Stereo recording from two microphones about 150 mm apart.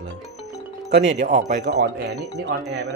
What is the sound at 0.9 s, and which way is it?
Speech, 55° right (ahead or behind).